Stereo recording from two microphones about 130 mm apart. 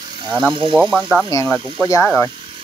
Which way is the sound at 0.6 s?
40° right (ahead or behind).